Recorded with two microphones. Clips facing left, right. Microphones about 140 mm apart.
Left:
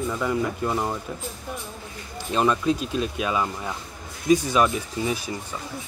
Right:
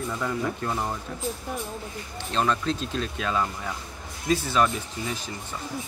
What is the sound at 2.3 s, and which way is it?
Speech, 10° left (ahead or behind).